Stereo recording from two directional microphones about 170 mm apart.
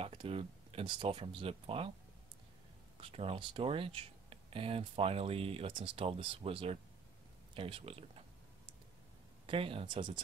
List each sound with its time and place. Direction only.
0.0 s speech: 35° right (ahead or behind)
3.0 s speech: 35° right (ahead or behind)
9.5 s speech: 35° right (ahead or behind)